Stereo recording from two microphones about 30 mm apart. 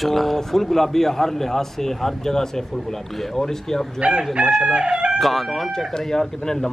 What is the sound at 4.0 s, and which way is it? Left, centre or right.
Chicken, right.